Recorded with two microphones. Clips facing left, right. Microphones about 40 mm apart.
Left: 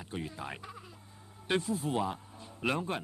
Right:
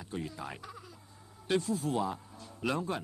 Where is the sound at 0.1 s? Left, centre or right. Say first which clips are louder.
Even; left.